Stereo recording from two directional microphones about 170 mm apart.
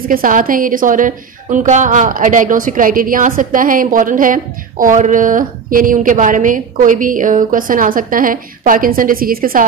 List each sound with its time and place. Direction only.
0.1 s a woman's voice: 55° right (ahead or behind)